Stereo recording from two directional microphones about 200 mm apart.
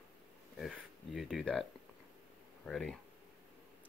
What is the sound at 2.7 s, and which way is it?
Speech, 5° left (ahead or behind).